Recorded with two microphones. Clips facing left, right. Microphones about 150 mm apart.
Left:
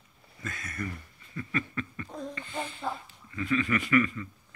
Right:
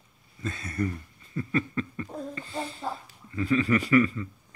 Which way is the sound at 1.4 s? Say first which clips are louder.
Right 5 dB; 30° right (ahead or behind).